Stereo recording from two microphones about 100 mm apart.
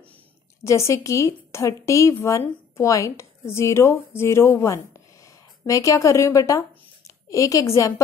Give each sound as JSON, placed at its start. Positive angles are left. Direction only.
{"t": 0.7, "sound": "a woman's voice", "side_deg": 30}